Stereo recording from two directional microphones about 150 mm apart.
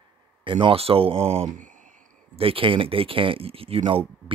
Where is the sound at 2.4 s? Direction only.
35° right (ahead or behind).